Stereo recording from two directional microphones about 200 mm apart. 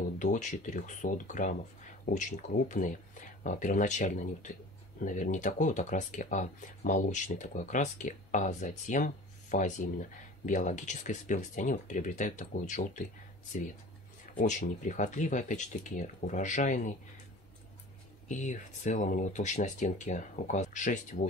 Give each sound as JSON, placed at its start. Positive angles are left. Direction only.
{"t": 0.2, "sound": "speech", "side_deg": 40}
{"t": 14.3, "sound": "speech", "side_deg": 40}
{"t": 18.3, "sound": "speech", "side_deg": 40}